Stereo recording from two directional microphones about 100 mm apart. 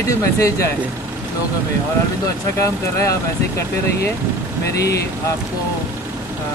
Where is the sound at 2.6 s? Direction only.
30° left (ahead or behind).